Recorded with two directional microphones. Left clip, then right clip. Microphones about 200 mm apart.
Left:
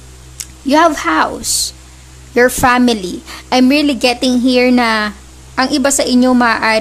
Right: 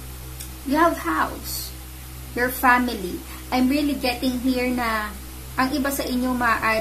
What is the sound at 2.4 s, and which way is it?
A woman's voice, 50° left (ahead or behind).